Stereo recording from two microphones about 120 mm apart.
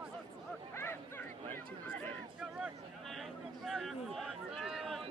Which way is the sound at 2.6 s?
Centre (ahead or behind).